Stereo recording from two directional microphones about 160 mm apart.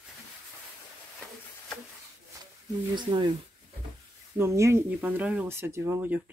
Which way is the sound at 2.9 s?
30° right (ahead or behind).